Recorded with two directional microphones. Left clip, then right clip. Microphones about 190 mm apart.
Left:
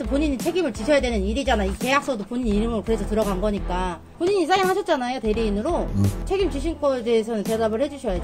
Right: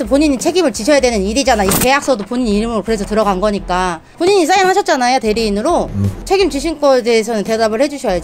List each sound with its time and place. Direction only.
0.1 s speech: 20° right (ahead or behind)